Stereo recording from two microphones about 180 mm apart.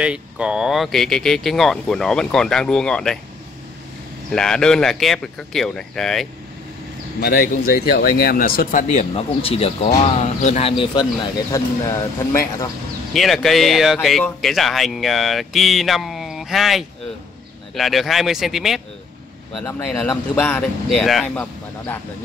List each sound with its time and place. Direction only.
0.0 s speech: 5° right (ahead or behind)
4.3 s speech: 5° left (ahead or behind)
7.2 s speech: 55° left (ahead or behind); by 10.7 s 40° left (ahead or behind)
10.8 s speech: 25° left (ahead or behind)
13.1 s speech: centre (ahead or behind)
19.6 s speech: 10° left (ahead or behind)